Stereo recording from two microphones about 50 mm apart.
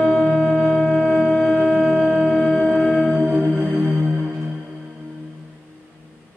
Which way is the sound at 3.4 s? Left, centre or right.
Right.